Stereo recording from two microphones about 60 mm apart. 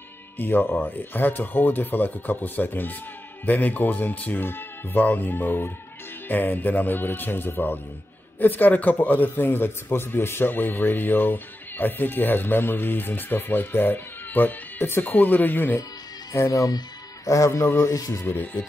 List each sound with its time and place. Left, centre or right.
0.4 s a man's voice: left
16.3 s speech: left
17.5 s speech: left
18.2 s a man's voice: left